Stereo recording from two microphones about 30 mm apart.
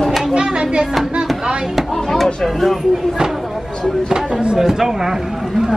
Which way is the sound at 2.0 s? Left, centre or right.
Centre.